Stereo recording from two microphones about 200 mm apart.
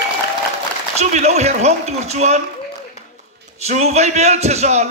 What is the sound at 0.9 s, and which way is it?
A man's voice, 35° right (ahead or behind).